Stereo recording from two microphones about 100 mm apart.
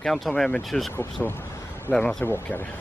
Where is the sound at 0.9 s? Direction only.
25° left (ahead or behind).